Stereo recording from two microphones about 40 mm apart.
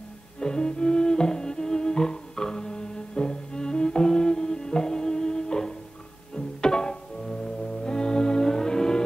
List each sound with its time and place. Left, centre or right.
0.4 s music: centre